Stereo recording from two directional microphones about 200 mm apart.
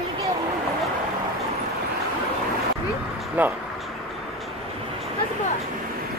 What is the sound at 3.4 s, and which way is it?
Speech, 10° right (ahead or behind).